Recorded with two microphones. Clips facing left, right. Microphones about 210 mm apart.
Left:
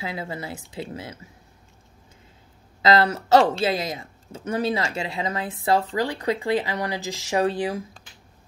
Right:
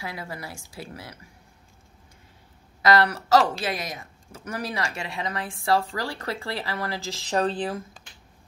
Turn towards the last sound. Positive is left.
turn(degrees=10)  # may be behind; listen again after turning